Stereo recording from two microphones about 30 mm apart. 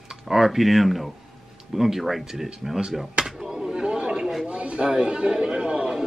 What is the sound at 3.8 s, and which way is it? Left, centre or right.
Chatter, right.